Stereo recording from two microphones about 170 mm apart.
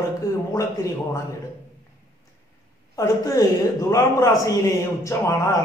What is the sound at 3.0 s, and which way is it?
A man's voice, 20° left (ahead or behind).